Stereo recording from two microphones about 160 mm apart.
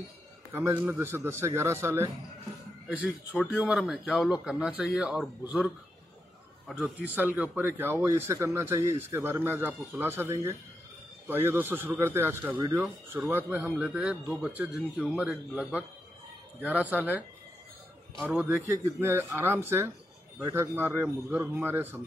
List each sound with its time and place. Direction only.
0.5 s a man's voice: 15° right (ahead or behind)
3.3 s a man's voice: 5° right (ahead or behind)
7.2 s speech: 10° right (ahead or behind)
16.9 s speech: 10° right (ahead or behind)
18.2 s a man's voice: 5° right (ahead or behind)
18.7 s speech: 15° right (ahead or behind)